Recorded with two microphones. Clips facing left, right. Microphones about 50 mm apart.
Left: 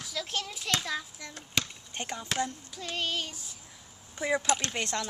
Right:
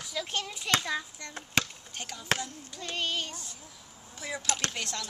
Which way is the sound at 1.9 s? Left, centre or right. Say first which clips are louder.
Left 5 dB; left.